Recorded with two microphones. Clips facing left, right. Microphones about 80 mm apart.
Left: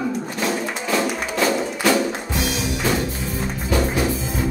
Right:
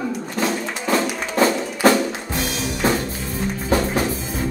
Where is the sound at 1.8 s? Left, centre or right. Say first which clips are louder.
Right 3 dB; right.